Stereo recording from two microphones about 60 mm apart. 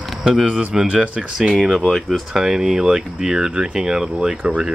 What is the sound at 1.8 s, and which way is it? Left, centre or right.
Speech, centre.